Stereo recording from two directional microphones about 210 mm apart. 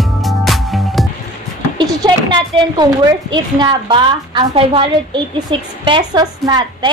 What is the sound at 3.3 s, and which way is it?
A woman's voice, 20° right (ahead or behind).